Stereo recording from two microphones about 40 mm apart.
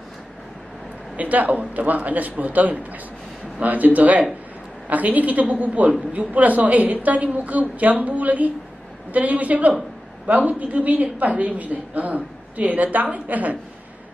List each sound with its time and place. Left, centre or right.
1.1 s a woman's voice: right